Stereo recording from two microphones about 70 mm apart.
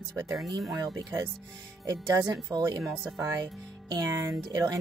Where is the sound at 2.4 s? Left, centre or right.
Right.